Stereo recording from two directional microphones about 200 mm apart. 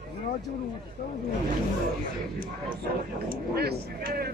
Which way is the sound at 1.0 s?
45° left (ahead or behind).